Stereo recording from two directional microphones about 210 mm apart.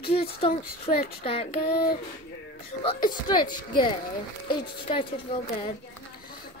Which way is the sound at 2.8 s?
25° left (ahead or behind).